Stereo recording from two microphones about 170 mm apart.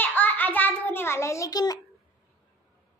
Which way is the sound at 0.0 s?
10° left (ahead or behind).